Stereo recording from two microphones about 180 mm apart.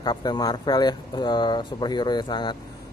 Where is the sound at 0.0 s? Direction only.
25° left (ahead or behind).